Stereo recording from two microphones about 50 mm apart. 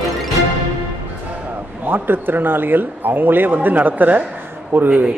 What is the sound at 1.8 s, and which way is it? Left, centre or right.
Speech, right.